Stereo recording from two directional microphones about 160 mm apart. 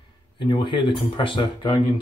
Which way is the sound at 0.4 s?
30° left (ahead or behind).